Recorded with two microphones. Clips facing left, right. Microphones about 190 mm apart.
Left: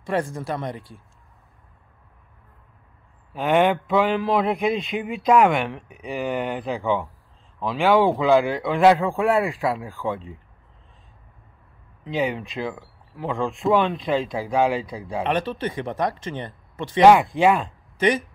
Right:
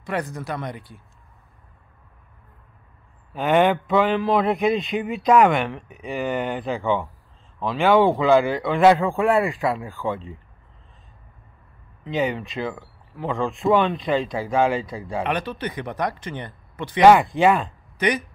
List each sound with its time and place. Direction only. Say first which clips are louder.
0.0 s speech: left 2 dB; 30° left (ahead or behind)
3.3 s a man's voice: right 1 dB; centre (ahead or behind)
12.0 s a man's voice: right 1 dB; centre (ahead or behind)
15.3 s speech: left 2 dB; 25° left (ahead or behind)
17.0 s a man's voice: even; centre (ahead or behind)
17.9 s speech: left 2 dB; 25° left (ahead or behind)